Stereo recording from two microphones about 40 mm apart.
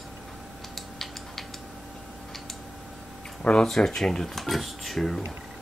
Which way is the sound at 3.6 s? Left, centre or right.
Centre.